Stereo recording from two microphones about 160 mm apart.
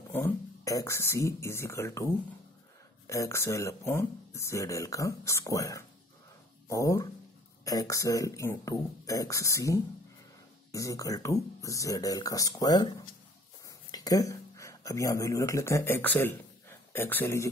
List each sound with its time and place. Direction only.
0.1 s speech: 15° left (ahead or behind)
3.1 s speech: 15° left (ahead or behind)
13.9 s speech: 20° left (ahead or behind)